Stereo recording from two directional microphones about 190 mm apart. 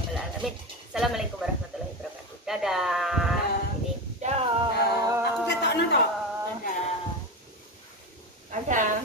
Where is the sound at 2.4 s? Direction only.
Centre (ahead or behind).